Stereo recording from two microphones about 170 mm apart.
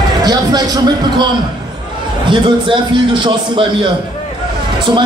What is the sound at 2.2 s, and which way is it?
A man's voice, 30° right (ahead or behind).